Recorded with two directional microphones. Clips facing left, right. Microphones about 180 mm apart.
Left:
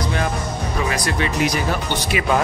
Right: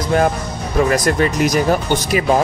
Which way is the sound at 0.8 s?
45° right (ahead or behind).